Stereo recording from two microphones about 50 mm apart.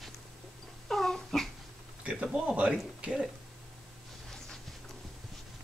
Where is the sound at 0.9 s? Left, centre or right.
Centre.